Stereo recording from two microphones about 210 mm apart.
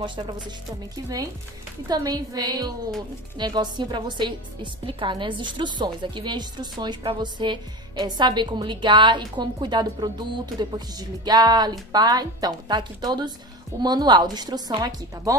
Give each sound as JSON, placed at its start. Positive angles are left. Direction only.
{"t": 0.0, "sound": "a woman's voice", "side_deg": -20}